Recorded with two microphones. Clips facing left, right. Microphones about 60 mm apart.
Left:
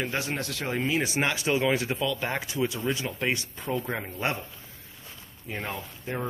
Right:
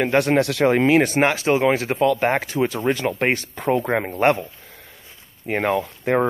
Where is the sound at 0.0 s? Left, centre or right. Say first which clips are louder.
Right 13 dB; right.